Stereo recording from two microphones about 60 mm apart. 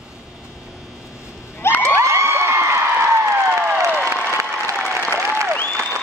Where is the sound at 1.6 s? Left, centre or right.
Left.